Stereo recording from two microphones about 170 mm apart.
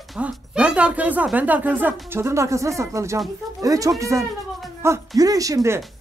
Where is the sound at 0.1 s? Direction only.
5° right (ahead or behind).